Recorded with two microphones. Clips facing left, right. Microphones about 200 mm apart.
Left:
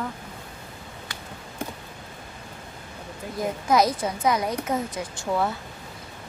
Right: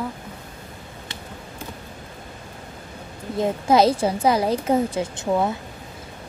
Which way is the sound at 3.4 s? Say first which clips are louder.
Right 4 dB; 30° right (ahead or behind).